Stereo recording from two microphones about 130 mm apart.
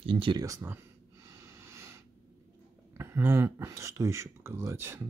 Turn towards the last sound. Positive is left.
turn(degrees=-20)  # may be behind; listen again after turning